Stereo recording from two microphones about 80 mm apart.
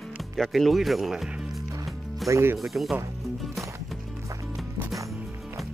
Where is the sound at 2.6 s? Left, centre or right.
Centre.